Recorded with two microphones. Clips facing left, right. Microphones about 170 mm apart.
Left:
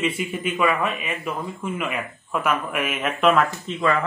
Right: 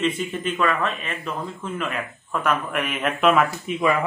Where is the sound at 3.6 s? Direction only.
10° right (ahead or behind).